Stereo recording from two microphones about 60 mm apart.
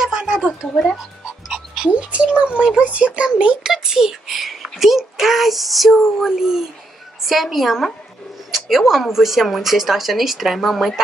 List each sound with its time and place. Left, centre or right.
0.0 s a sound: centre
0.7 s speech: centre
1.5 s a child's voice: centre